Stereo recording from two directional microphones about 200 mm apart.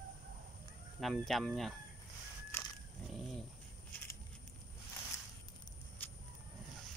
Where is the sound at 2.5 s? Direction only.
10° left (ahead or behind).